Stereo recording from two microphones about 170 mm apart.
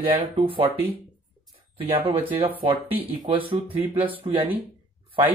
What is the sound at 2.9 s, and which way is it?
Speech, 30° right (ahead or behind).